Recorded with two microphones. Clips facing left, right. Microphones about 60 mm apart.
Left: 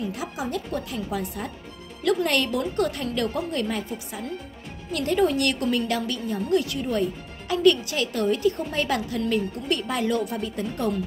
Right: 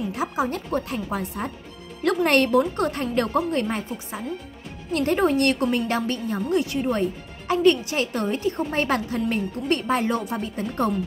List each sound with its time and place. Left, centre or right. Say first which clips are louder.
0.1 s speech: right 4 dB; right
6.5 s speech: right 1 dB; right